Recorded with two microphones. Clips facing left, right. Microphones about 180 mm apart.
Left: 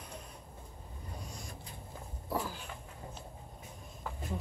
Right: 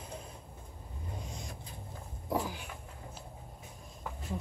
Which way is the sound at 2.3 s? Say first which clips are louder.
Right 3 dB; 15° right (ahead or behind).